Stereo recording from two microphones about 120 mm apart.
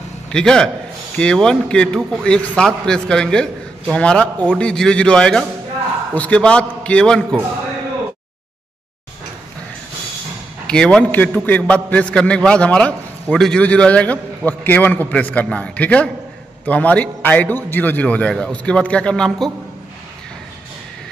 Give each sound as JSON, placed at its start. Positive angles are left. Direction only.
{"t": 0.3, "sound": "a man's voice", "side_deg": 5}
{"t": 10.7, "sound": "a man's voice", "side_deg": 5}